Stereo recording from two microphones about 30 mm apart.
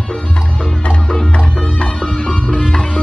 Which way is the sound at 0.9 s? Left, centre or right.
Left.